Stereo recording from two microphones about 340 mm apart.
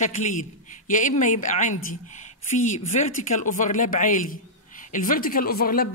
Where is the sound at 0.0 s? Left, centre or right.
Left.